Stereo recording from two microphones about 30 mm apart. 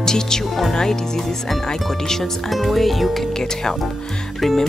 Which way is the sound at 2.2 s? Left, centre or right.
Centre.